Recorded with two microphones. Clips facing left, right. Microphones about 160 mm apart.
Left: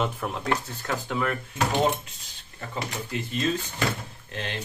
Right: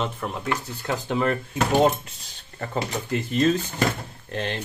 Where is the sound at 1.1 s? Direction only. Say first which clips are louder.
Right 5 dB; 25° right (ahead or behind).